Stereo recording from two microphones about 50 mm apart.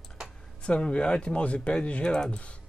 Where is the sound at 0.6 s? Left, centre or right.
Centre.